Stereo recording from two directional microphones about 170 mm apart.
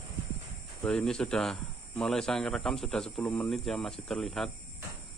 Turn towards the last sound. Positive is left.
turn(degrees=0)  # may be behind; listen again after turning